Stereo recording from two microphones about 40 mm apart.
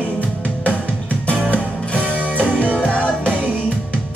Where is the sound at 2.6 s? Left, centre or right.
Left.